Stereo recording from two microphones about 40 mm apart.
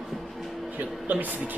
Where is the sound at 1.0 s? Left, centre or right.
Right.